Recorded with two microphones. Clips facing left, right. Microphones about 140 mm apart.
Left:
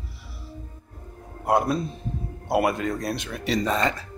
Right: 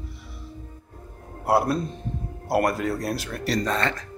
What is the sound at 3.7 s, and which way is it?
Speech, 10° left (ahead or behind).